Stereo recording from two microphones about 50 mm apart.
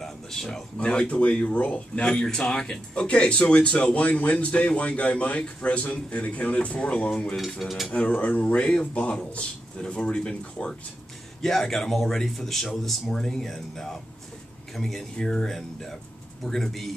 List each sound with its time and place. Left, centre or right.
0.0 s a sound: centre
0.7 s speech: left
2.0 s speech: centre
7.3 s speech: centre
8.2 s speech: left
11.4 s speech: centre